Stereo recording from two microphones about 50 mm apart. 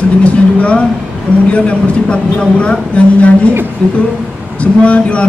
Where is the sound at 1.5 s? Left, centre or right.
Left.